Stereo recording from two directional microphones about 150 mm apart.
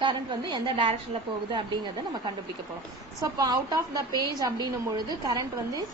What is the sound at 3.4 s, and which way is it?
A woman's voice, 25° right (ahead or behind).